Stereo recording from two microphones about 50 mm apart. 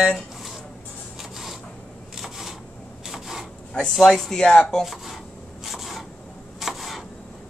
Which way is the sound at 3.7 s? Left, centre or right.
Centre.